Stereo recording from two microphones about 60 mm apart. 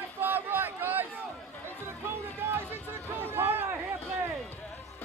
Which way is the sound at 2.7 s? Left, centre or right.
Right.